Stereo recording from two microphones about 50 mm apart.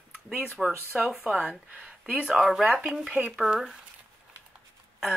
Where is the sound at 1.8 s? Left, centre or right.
Right.